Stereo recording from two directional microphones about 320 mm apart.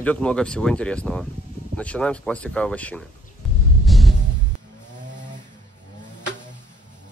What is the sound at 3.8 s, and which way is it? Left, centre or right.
Music, centre.